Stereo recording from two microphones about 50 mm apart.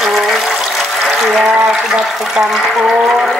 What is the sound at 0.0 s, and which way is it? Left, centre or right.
Water, centre.